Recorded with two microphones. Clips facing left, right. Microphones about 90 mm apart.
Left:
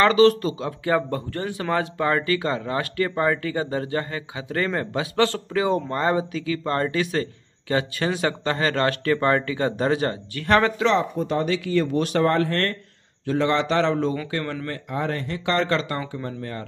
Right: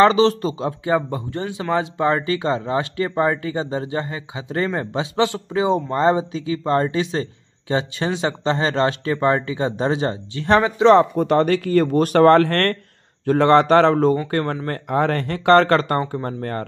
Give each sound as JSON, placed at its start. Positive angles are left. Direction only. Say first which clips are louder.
{"t": 0.0, "sound": "speech", "louder": "right 2 dB", "side_deg": -30}
{"t": 10.9, "sound": "speech", "louder": "right 8 dB", "side_deg": -60}
{"t": 13.2, "sound": "speech", "louder": "right 7 dB", "side_deg": -50}
{"t": 14.4, "sound": "speech", "louder": "right 5 dB", "side_deg": -35}
{"t": 14.7, "sound": "speech", "louder": "right 9 dB", "side_deg": -55}